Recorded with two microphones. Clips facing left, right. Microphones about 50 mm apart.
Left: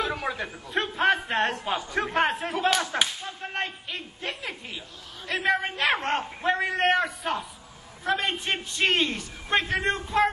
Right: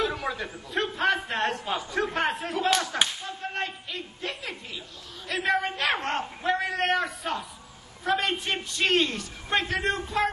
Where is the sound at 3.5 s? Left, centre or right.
Left.